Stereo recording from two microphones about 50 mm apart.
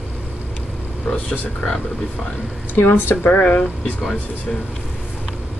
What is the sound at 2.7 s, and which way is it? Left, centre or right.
Speech, left.